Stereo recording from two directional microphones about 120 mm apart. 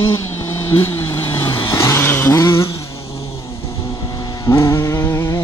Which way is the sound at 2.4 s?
30° left (ahead or behind).